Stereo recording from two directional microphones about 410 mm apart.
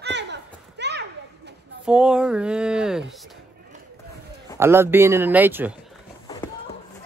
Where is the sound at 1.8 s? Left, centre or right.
Centre.